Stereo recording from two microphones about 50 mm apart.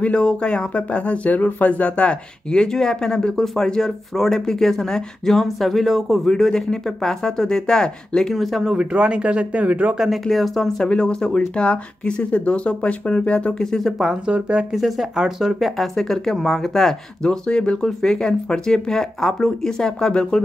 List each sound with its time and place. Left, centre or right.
0.0 s speech: left
8.4 s speech: centre
8.7 s speech: right
9.9 s speech: centre
10.9 s speech: centre
13.7 s speech: centre
14.2 s speech: centre
14.7 s speech: centre